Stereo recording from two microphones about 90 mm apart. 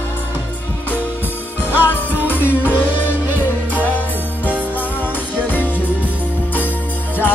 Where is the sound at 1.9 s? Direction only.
20° left (ahead or behind).